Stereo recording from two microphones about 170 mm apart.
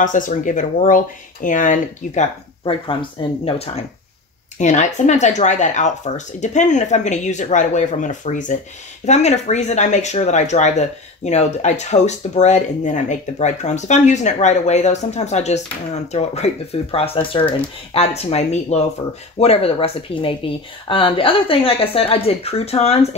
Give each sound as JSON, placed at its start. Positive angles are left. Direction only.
{"t": 0.0, "sound": "speech", "side_deg": 50}
{"t": 2.6, "sound": "speech", "side_deg": 30}